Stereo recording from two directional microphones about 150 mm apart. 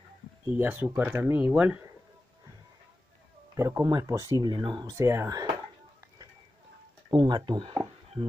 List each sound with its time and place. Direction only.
0.5 s speech: 10° right (ahead or behind)
3.5 s speech: 20° right (ahead or behind)
7.1 s speech: 30° right (ahead or behind)